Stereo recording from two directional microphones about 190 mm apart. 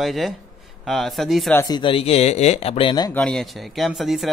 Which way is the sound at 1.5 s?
20° left (ahead or behind).